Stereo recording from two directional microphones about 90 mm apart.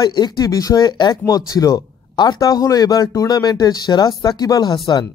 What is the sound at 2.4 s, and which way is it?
Speech, 40° left (ahead or behind).